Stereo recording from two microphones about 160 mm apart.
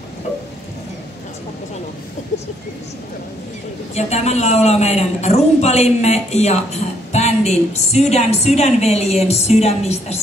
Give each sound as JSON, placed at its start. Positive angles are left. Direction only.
{"t": 3.9, "sound": "a woman's voice", "side_deg": 45}